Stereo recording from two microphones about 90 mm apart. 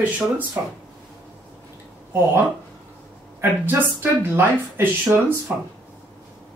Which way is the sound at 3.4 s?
25° right (ahead or behind).